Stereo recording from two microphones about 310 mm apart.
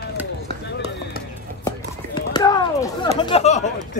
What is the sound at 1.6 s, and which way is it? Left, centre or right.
Clip-clop, centre.